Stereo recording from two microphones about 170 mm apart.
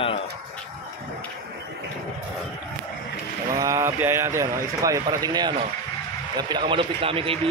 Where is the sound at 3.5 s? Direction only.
20° right (ahead or behind).